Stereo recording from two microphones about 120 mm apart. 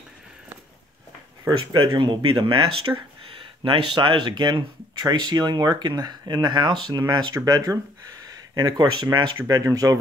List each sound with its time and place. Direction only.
1.7 s speech: 40° right (ahead or behind)